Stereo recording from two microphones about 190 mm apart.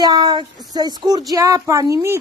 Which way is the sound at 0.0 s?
20° right (ahead or behind).